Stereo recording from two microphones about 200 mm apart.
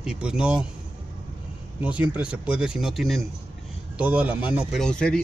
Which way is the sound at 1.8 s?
5° right (ahead or behind).